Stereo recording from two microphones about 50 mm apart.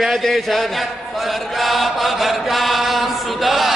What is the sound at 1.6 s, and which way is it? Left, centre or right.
Chant, centre.